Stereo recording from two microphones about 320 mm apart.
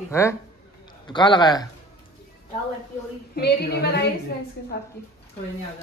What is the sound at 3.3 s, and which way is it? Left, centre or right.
Speech, left.